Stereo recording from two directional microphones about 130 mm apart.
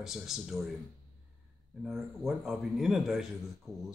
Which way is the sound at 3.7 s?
25° right (ahead or behind).